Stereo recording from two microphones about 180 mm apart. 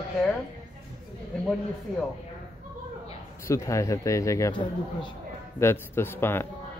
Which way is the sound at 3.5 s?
15° left (ahead or behind).